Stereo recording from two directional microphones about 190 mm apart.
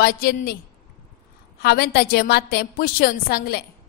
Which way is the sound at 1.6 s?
55° left (ahead or behind).